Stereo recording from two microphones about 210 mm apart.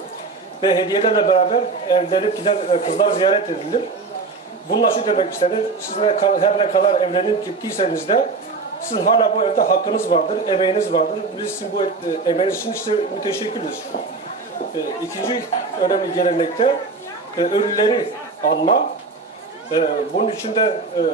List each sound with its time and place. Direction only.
0.6 s a man's voice: 20° left (ahead or behind)
8.9 s a man's voice: 25° left (ahead or behind)
15.2 s a man's voice: 25° left (ahead or behind)
18.4 s speech: 40° left (ahead or behind)
19.7 s a man's voice: 25° left (ahead or behind)